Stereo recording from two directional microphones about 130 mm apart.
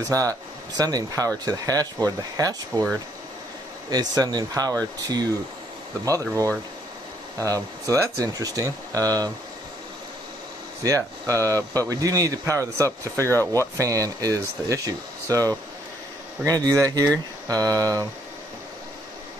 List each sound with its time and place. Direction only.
0.1 s speech: 25° right (ahead or behind)
3.9 s speech: 30° right (ahead or behind)
6.0 s speech: 25° right (ahead or behind)
10.8 s speech: 25° right (ahead or behind)